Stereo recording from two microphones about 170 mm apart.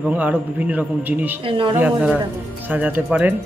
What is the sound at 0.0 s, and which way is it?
Speech, 10° right (ahead or behind).